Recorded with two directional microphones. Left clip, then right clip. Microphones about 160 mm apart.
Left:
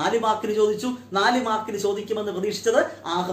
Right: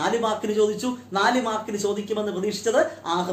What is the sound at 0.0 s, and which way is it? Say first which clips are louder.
Speech: left 2 dB; 10° right (ahead or behind).